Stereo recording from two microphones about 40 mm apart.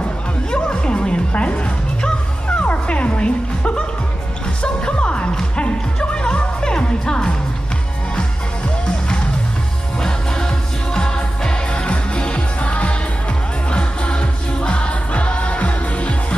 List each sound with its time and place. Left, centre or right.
0.5 s music: left
2.6 s music: left
4.8 s music: left
11.0 s music: left